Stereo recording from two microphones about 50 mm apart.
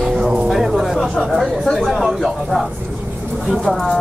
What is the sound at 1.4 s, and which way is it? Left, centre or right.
Speech, centre.